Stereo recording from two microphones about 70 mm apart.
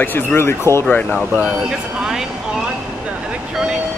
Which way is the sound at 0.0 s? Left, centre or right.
Left.